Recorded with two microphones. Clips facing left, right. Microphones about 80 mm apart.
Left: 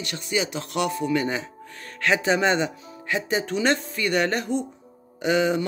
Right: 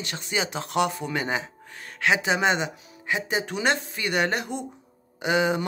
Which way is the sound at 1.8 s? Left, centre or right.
Centre.